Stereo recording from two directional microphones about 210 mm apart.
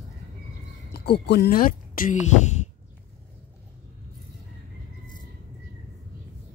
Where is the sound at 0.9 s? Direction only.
50° left (ahead or behind).